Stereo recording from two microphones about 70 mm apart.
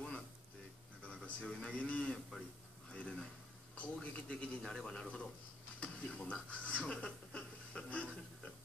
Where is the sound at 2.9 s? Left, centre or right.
Centre.